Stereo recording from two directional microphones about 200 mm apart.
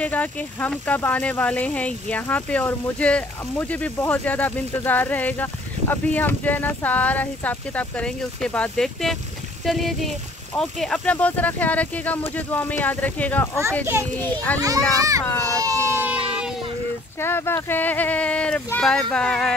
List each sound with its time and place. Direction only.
0.0 s speech: 5° left (ahead or behind)
14.6 s a child's voice: 15° right (ahead or behind)
15.5 s baby cry: 15° right (ahead or behind)
17.2 s speech: 10° left (ahead or behind)